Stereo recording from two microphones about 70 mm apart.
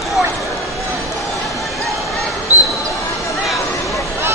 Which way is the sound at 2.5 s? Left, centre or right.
Right.